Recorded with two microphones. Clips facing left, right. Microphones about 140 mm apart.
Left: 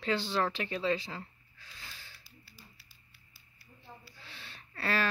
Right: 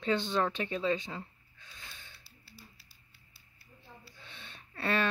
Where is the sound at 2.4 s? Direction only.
30° right (ahead or behind).